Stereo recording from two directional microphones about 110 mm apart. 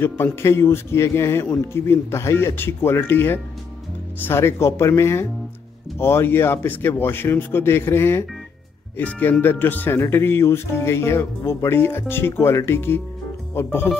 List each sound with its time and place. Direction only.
0.0 s speech: 25° left (ahead or behind)